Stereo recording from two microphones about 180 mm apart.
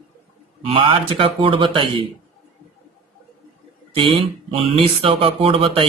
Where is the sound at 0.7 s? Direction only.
30° right (ahead or behind).